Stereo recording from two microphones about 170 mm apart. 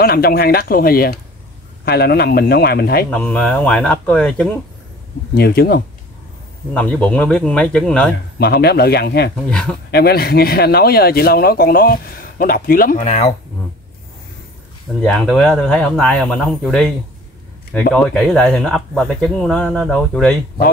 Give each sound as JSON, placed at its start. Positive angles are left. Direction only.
{"t": 0.0, "sound": "speech", "side_deg": 65}
{"t": 3.1, "sound": "speech", "side_deg": 10}
{"t": 5.3, "sound": "speech", "side_deg": 65}
{"t": 6.7, "sound": "speech", "side_deg": 5}
{"t": 8.4, "sound": "speech", "side_deg": 70}
{"t": 9.5, "sound": "speech", "side_deg": 5}
{"t": 9.8, "sound": "speech", "side_deg": 70}
{"t": 13.0, "sound": "speech", "side_deg": 40}
{"t": 15.0, "sound": "speech", "side_deg": 0}